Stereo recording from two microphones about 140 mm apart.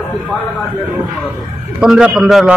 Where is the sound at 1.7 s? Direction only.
5° right (ahead or behind).